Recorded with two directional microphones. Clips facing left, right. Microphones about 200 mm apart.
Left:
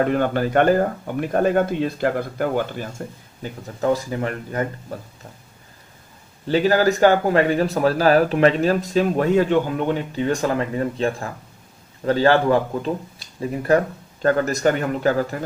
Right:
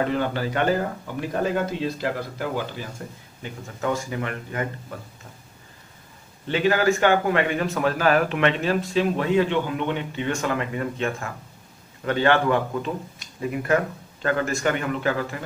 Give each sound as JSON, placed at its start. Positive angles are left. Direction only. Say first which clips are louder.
{"t": 0.0, "sound": "speech", "louder": "left 5 dB", "side_deg": 50}
{"t": 3.4, "sound": "a man's voice", "louder": "left 6 dB", "side_deg": 35}
{"t": 6.4, "sound": "a man's voice", "louder": "left 3 dB", "side_deg": 35}